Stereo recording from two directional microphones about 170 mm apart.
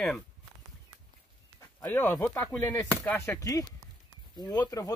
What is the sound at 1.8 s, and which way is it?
Speech, 10° left (ahead or behind).